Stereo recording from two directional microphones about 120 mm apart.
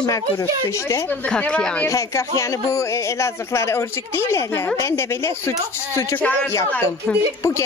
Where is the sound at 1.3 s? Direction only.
10° left (ahead or behind).